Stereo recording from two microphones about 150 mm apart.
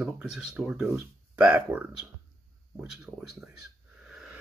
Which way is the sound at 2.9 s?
5° right (ahead or behind).